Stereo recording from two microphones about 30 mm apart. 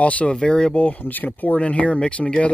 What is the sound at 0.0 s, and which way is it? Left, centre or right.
Speech, left.